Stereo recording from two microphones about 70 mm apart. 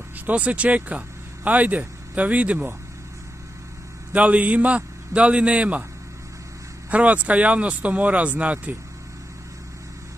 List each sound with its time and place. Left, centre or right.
0.3 s speech: right
4.1 s speech: right
6.9 s speech: centre